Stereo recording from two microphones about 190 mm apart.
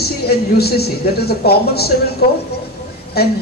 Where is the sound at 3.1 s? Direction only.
55° left (ahead or behind).